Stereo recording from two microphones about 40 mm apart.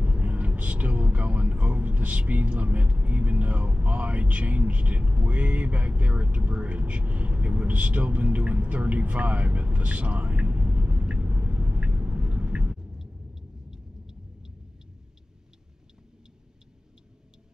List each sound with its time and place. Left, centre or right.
0.0 s vehicle: right
1.2 s speech: right
10.4 s a sound: right
13.0 s rumble: centre